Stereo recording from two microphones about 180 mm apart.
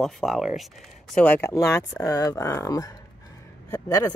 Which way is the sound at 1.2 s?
10° left (ahead or behind).